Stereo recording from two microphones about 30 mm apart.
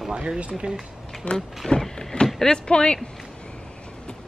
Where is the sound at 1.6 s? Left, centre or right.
Left.